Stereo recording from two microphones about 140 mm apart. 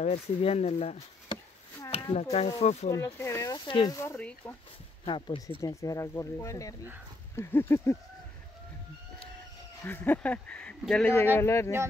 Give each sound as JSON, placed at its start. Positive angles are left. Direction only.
{"t": 0.0, "sound": "speech", "side_deg": 45}
{"t": 1.9, "sound": "a sound", "side_deg": 40}
{"t": 2.6, "sound": "speech", "side_deg": 50}
{"t": 2.9, "sound": "speech", "side_deg": 20}
{"t": 3.5, "sound": "speech", "side_deg": 35}
{"t": 3.9, "sound": "speech", "side_deg": 15}
{"t": 5.0, "sound": "speech", "side_deg": 35}
{"t": 5.6, "sound": "speech", "side_deg": 25}
{"t": 9.8, "sound": "speech", "side_deg": 15}
{"t": 11.3, "sound": "speech", "side_deg": 20}